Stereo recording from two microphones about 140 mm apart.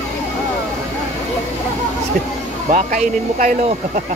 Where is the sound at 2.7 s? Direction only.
65° right (ahead or behind).